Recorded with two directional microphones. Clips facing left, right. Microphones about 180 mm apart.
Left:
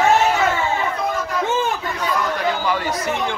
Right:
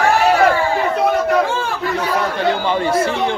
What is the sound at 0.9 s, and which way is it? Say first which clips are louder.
Chatter: right 8 dB; 70° right (ahead or behind).